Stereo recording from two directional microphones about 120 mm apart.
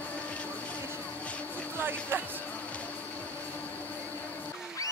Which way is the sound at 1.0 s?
10° left (ahead or behind).